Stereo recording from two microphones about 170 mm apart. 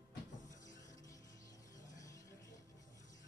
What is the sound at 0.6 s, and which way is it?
Music, 20° left (ahead or behind).